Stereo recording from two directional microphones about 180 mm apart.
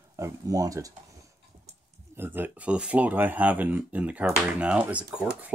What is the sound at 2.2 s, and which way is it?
Speech, 10° right (ahead or behind).